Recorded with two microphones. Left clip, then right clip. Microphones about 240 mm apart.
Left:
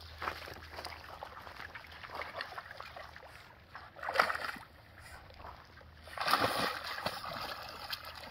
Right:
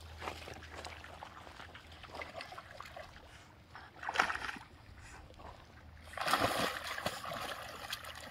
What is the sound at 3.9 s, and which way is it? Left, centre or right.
Slosh, left.